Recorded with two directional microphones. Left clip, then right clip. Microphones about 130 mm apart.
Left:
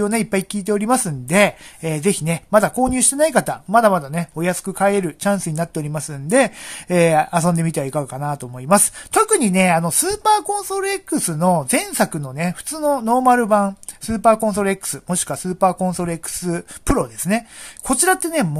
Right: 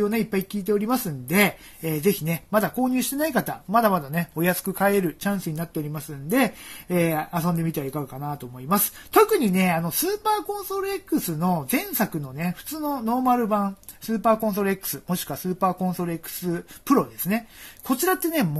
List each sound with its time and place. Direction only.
0.0 s speech: 50° left (ahead or behind); by 5.1 s 20° left (ahead or behind)
5.2 s speech: 50° left (ahead or behind)
9.5 s speech: 40° left (ahead or behind)
14.4 s speech: 40° left (ahead or behind)